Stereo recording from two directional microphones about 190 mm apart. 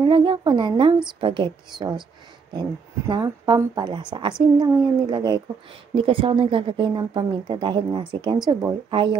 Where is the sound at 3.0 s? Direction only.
25° right (ahead or behind).